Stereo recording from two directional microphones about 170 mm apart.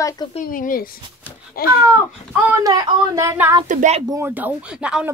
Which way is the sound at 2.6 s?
20° right (ahead or behind).